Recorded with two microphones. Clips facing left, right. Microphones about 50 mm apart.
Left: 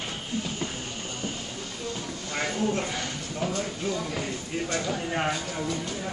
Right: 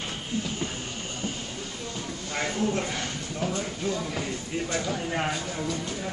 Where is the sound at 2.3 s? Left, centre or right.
Centre.